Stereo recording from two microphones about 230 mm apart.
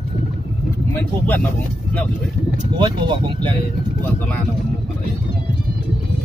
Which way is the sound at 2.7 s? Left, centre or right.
Right.